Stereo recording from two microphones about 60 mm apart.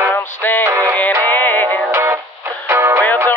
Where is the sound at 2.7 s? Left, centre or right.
Right.